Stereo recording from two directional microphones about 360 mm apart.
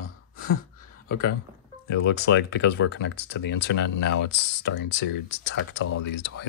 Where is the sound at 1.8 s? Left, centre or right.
Left.